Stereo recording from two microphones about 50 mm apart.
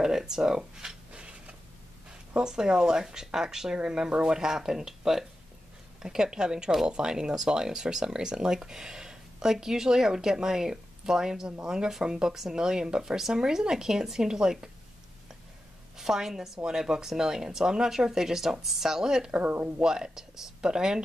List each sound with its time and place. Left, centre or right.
0.0 s speech: centre
2.3 s speech: centre
16.0 s speech: centre
19.3 s speech: right
19.8 s speech: centre